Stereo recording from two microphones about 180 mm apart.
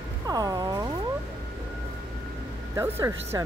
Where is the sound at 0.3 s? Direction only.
20° right (ahead or behind).